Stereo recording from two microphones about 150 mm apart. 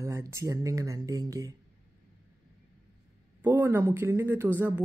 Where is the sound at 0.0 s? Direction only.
20° right (ahead or behind).